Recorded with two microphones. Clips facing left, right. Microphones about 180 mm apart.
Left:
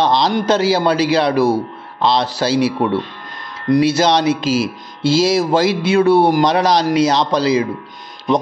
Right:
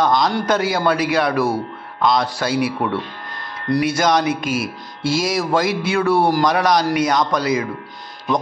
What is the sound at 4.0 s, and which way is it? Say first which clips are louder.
Speech: left 3 dB; 25° left (ahead or behind).